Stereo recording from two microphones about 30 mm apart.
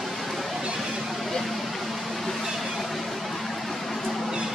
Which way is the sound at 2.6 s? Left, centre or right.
Centre.